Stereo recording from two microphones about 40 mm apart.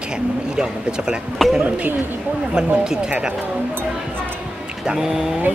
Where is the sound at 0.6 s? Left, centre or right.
Right.